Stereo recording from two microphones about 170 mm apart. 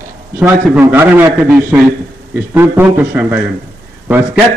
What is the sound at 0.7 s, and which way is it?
A man's voice, 10° right (ahead or behind).